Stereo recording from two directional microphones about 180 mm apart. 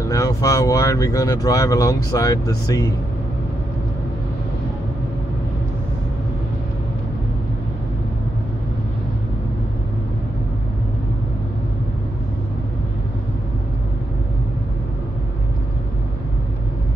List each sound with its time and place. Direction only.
0.0 s speech: 15° left (ahead or behind)